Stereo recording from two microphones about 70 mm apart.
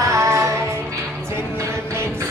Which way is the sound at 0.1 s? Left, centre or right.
Right.